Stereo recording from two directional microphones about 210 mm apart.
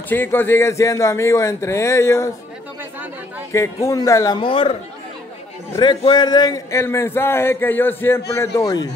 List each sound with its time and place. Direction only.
0.1 s speech: 10° left (ahead or behind)
2.8 s chatter: 10° right (ahead or behind)
3.5 s speech: 15° left (ahead or behind)
5.8 s speech: 20° left (ahead or behind)